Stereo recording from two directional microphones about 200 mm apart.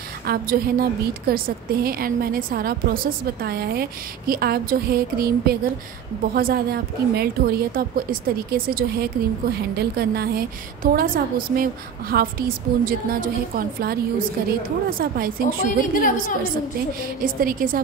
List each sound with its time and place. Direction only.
0.3 s a woman's voice: 50° right (ahead or behind)
15.8 s a woman's voice: 40° left (ahead or behind)
17.2 s a woman's voice: 45° right (ahead or behind)